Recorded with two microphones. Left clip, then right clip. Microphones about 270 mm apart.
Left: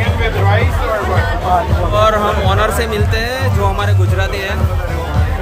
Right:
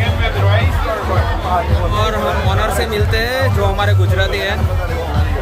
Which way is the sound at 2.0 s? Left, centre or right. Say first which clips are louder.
Left 6 dB; centre.